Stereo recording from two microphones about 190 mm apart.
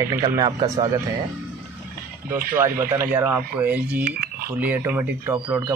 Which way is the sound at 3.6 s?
5° right (ahead or behind).